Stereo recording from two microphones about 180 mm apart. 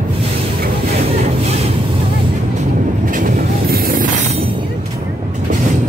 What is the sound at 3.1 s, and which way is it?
Vehicle, 55° right (ahead or behind).